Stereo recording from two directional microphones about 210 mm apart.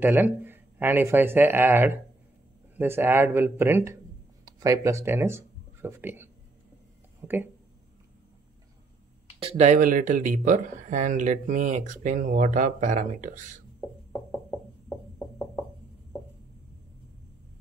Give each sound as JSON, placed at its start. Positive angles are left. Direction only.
{"t": 0.0, "sound": "speech", "side_deg": -10}
{"t": 9.4, "sound": "speech", "side_deg": -30}